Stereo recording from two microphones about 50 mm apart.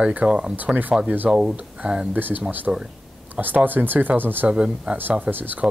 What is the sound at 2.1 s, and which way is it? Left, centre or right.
Speech, right.